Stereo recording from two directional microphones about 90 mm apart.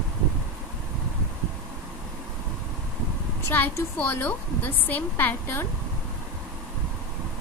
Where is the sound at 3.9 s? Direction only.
20° left (ahead or behind).